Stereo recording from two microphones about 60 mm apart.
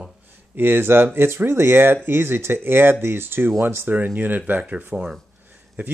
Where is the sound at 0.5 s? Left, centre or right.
Right.